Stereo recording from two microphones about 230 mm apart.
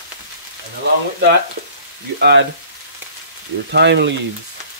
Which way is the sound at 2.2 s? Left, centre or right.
Right.